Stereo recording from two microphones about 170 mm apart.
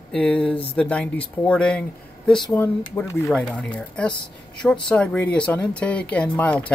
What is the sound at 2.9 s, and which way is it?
Speech, 15° left (ahead or behind).